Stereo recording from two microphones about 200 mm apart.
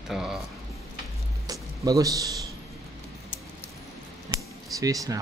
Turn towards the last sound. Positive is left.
turn(degrees=-15)  # may be behind; listen again after turning